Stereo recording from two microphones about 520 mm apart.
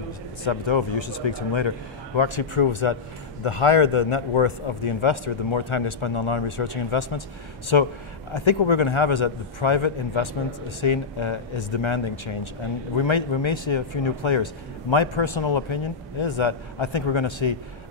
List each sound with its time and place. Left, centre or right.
0.4 s speech: left